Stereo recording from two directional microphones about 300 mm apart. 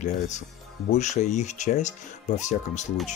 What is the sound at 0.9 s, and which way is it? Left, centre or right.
Speech, left.